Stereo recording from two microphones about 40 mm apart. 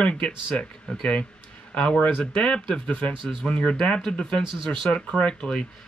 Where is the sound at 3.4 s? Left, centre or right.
Left.